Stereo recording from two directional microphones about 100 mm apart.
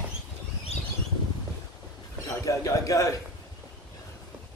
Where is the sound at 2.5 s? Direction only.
35° left (ahead or behind).